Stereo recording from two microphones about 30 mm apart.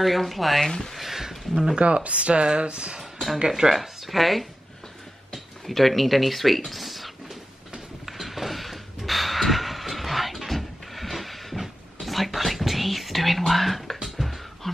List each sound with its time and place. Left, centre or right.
0.0 s speech: centre
0.7 s speech: centre
0.9 s speech: centre
1.8 s speech: right
3.4 s speech: centre
3.8 s speech: centre
8.0 s a sound: centre
11.6 s whispering: centre
13.5 s speech: centre
14.0 s a sound: centre